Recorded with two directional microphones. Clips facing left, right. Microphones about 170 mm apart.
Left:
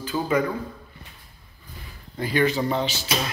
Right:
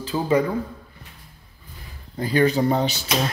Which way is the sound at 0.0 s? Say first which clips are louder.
Right 3 dB; 30° right (ahead or behind).